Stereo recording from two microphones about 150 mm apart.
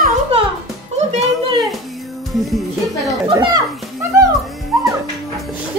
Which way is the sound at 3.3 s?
25° right (ahead or behind).